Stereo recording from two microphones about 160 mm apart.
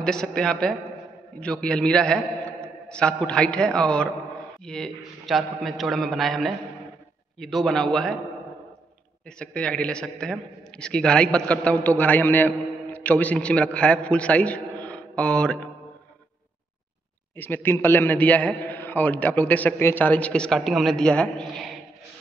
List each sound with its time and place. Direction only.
0.0 s a man's voice: 5° left (ahead or behind)
9.4 s a man's voice: 5° left (ahead or behind)
17.4 s a man's voice: 15° left (ahead or behind)